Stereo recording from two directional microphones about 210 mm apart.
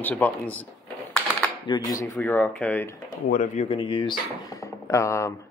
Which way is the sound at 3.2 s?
35° left (ahead or behind).